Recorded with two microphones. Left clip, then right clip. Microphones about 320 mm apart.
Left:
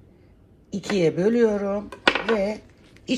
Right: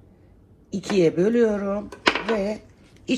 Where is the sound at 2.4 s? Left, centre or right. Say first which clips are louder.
Left 1 dB; left.